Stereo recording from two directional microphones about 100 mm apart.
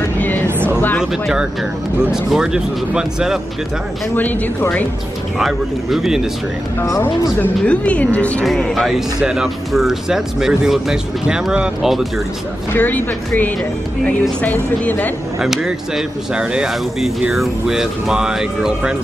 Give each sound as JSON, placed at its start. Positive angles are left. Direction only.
{"t": 0.2, "sound": "a sound", "side_deg": 15}
{"t": 1.1, "sound": "speech", "side_deg": -5}
{"t": 4.1, "sound": "speech", "side_deg": 20}
{"t": 5.4, "sound": "speech", "side_deg": -5}
{"t": 6.8, "sound": "speech", "side_deg": 25}
{"t": 7.3, "sound": "speech", "side_deg": 10}
{"t": 12.7, "sound": "speech", "side_deg": 15}
{"t": 15.4, "sound": "speech", "side_deg": -5}